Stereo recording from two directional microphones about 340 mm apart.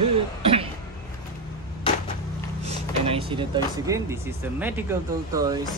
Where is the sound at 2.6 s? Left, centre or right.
Centre.